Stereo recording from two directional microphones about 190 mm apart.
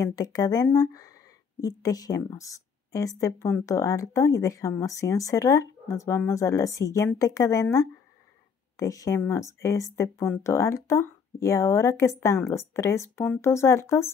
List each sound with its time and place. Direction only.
0.0 s speech: 20° left (ahead or behind)